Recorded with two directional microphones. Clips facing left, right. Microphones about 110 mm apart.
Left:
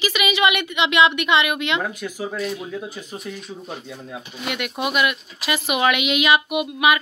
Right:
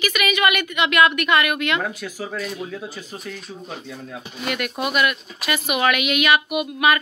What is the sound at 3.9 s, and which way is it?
A woman's voice, 15° left (ahead or behind).